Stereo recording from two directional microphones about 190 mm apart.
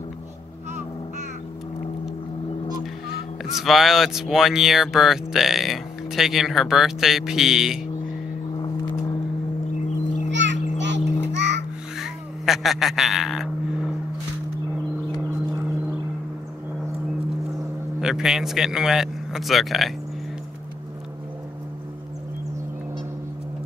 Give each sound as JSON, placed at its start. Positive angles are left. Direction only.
{"t": 3.5, "sound": "speech", "side_deg": 0}
{"t": 10.3, "sound": "children playing", "side_deg": -70}
{"t": 12.0, "sound": "a sound", "side_deg": 0}
{"t": 18.0, "sound": "speech", "side_deg": -5}